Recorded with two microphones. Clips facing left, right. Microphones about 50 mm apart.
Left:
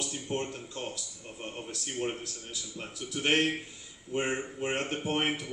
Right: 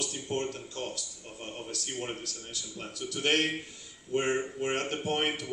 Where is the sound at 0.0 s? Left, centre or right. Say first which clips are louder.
Right 1 dB; left.